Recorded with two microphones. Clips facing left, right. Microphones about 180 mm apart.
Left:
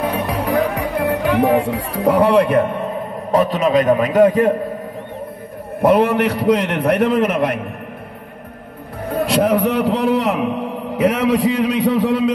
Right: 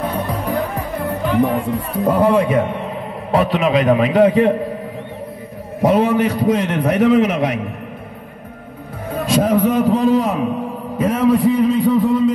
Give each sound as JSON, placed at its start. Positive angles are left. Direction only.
{"t": 0.0, "sound": "music", "side_deg": 80}
{"t": 3.3, "sound": "a man's voice", "side_deg": 45}
{"t": 5.8, "sound": "a man's voice", "side_deg": 60}
{"t": 9.1, "sound": "a man's voice", "side_deg": 65}